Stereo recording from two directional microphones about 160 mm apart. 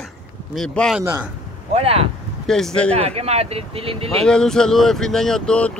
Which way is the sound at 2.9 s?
40° right (ahead or behind).